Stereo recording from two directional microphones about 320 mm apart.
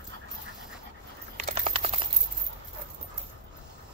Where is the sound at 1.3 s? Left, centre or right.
Centre.